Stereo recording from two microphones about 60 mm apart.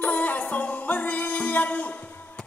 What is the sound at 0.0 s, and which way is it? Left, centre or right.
Music, left.